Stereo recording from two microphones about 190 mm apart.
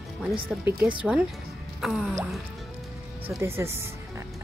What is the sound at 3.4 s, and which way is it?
Speech, 15° right (ahead or behind).